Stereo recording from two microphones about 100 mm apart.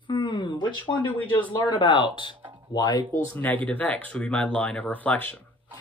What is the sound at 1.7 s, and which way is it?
Speech, 55° left (ahead or behind).